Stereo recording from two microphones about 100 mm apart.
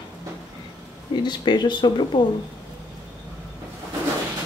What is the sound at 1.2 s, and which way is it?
Speech, 50° left (ahead or behind).